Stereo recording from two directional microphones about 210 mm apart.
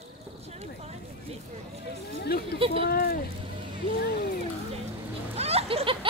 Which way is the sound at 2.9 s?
45° left (ahead or behind).